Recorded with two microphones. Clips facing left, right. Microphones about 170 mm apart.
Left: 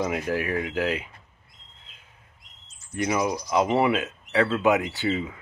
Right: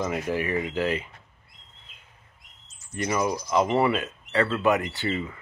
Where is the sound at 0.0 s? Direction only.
5° left (ahead or behind).